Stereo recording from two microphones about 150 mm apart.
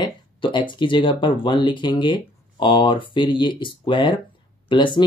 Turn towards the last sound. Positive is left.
turn(degrees=30)  # may be behind; listen again after turning